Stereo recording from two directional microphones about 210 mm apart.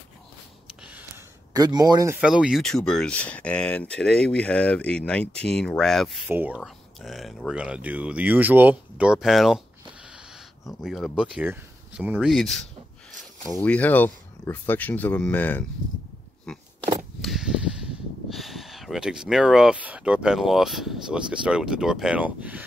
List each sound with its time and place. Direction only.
1.5 s a man's voice: 20° right (ahead or behind)
2.1 s speech: 5° right (ahead or behind)
10.7 s speech: centre (ahead or behind)
16.5 s a sound: centre (ahead or behind)
17.2 s speech: centre (ahead or behind)